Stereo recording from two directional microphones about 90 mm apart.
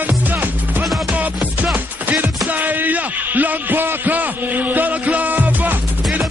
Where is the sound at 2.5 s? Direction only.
20° right (ahead or behind).